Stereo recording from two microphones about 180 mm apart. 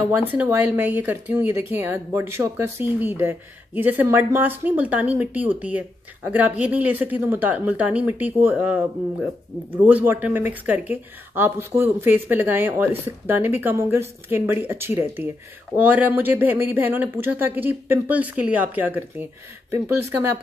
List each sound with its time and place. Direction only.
0.3 s speech: 10° right (ahead or behind)